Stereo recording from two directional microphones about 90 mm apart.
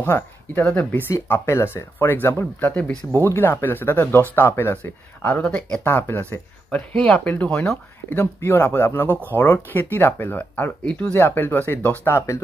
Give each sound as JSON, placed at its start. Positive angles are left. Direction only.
{"t": 0.0, "sound": "speech", "side_deg": 20}
{"t": 3.2, "sound": "speech", "side_deg": 25}
{"t": 5.2, "sound": "speech", "side_deg": 15}
{"t": 5.9, "sound": "speech", "side_deg": 25}
{"t": 7.0, "sound": "speech", "side_deg": 10}
{"t": 8.1, "sound": "speech", "side_deg": 25}